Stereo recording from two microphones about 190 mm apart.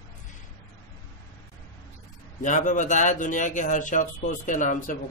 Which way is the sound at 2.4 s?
40° left (ahead or behind).